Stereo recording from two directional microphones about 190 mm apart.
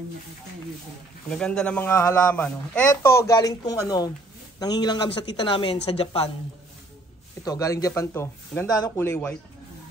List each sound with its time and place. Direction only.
1.3 s a woman's voice: 5° left (ahead or behind); by 6.3 s 30° left (ahead or behind)
7.4 s speech: 15° left (ahead or behind)